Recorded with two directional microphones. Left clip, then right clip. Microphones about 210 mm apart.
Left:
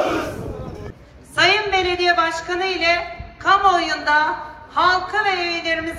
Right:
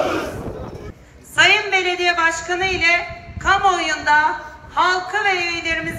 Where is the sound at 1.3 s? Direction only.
55° left (ahead or behind).